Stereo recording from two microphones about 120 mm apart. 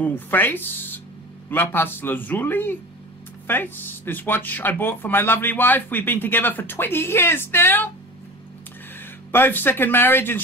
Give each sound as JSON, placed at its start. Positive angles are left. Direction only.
{"t": 0.0, "sound": "speech", "side_deg": 15}
{"t": 9.3, "sound": "speech", "side_deg": 15}